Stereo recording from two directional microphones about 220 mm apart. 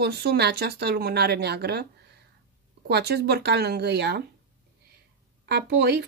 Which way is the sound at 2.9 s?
50° right (ahead or behind).